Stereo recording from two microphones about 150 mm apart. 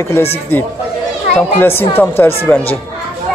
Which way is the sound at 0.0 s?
15° left (ahead or behind).